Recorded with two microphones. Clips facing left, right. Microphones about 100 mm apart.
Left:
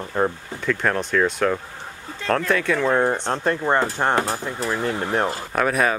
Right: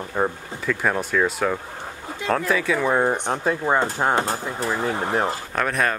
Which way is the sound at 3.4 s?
5° right (ahead or behind).